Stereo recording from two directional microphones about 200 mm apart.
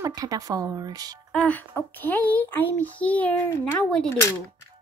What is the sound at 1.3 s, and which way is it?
A child's voice, 5° left (ahead or behind).